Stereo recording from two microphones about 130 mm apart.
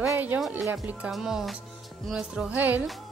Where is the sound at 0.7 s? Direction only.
15° right (ahead or behind).